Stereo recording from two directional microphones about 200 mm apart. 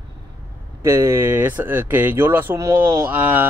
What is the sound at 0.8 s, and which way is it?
Speech, 15° right (ahead or behind).